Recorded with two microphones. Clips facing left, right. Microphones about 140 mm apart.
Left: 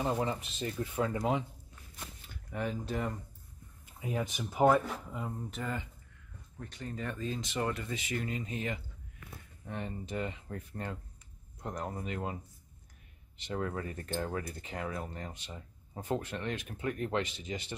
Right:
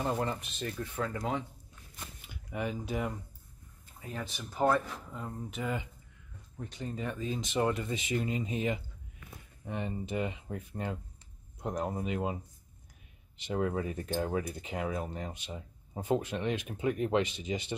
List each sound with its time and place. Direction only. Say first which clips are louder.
0.0 s speech: even; centre (ahead or behind)
1.1 s speech: left 3 dB; 15° left (ahead or behind)
2.2 s speech: right 1 dB; 10° right (ahead or behind)
4.0 s speech: left 5 dB; 15° left (ahead or behind)
5.5 s speech: right 3 dB; 10° right (ahead or behind)
13.4 s speech: right 4 dB; 15° right (ahead or behind)